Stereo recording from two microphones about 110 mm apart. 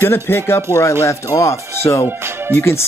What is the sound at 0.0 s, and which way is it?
Speech, 20° left (ahead or behind).